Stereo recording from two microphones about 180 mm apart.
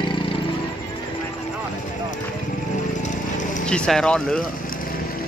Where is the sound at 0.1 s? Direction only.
30° left (ahead or behind).